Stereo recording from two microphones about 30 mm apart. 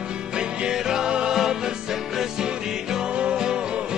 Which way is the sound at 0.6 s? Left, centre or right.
Right.